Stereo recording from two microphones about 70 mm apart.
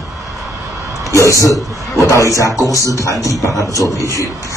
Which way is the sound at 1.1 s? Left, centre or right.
Left.